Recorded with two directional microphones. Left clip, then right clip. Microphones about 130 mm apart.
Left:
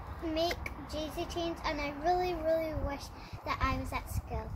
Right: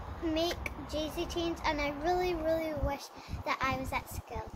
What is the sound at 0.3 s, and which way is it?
A child's voice, 15° right (ahead or behind).